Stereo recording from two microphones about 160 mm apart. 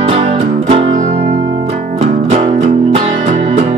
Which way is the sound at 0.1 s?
40° right (ahead or behind).